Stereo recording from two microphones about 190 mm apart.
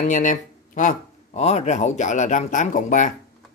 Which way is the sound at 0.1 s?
45° left (ahead or behind).